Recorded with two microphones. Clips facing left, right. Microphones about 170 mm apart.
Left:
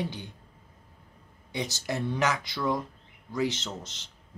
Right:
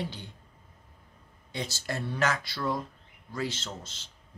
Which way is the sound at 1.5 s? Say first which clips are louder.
Left 3 dB; 15° left (ahead or behind).